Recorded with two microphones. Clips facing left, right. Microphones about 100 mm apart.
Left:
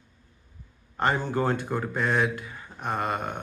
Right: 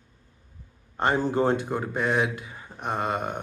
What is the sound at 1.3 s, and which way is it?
Speech, 25° right (ahead or behind).